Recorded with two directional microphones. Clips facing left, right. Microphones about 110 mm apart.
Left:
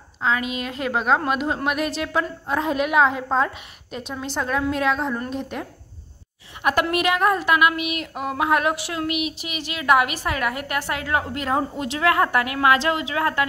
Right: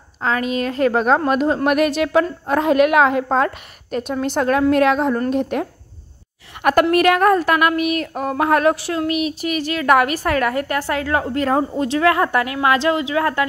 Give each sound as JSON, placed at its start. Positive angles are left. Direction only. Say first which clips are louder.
{"t": 0.2, "sound": "a woman's voice", "louder": "right 4 dB", "side_deg": -40}
{"t": 1.7, "sound": "a woman's voice", "louder": "right 8 dB", "side_deg": -65}
{"t": 6.6, "sound": "a woman's voice", "louder": "right 7 dB", "side_deg": -50}